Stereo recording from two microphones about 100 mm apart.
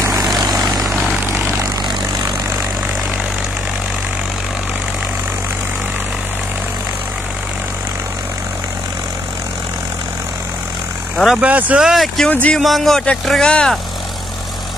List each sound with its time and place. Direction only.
1.2 s vehicle: 30° right (ahead or behind)
11.3 s speech: 10° right (ahead or behind)
11.9 s speech: centre (ahead or behind)
12.3 s speech: 15° left (ahead or behind)
12.5 s speech: centre (ahead or behind)